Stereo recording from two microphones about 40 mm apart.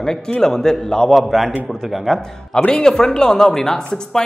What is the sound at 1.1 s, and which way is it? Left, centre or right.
A man's voice, centre.